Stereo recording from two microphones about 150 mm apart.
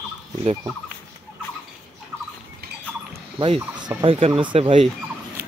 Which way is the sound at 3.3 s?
35° right (ahead or behind).